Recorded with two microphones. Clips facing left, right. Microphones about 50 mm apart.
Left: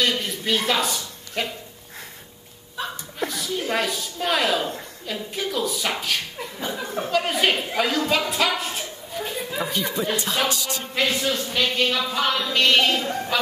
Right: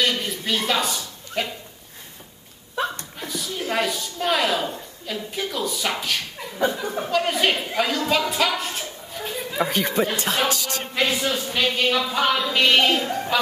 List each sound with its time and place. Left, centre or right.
0.0 s a sound: centre
3.2 s a woman's voice: centre
9.7 s music: right
11.0 s a woman's voice: centre